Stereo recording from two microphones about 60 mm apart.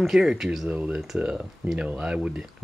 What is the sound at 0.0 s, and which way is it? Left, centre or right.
Speech, centre.